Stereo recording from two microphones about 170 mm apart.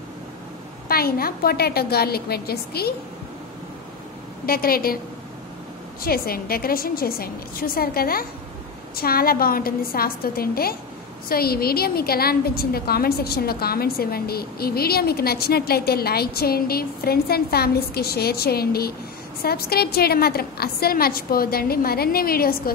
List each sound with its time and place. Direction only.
0.8 s a woman's voice: 60° left (ahead or behind)
4.5 s a woman's voice: 60° left (ahead or behind)
6.0 s a woman's voice: 60° left (ahead or behind)